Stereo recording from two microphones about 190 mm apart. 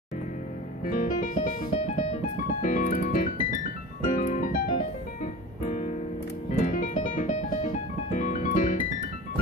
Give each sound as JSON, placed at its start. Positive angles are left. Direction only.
{"t": 0.8, "sound": "music", "side_deg": 45}
{"t": 2.6, "sound": "piano", "side_deg": 45}
{"t": 5.2, "sound": "music", "side_deg": 40}